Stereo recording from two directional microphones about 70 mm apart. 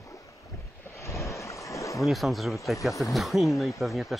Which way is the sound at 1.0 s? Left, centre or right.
Left.